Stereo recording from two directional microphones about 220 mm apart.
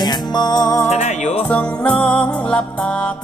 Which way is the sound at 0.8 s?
30° left (ahead or behind).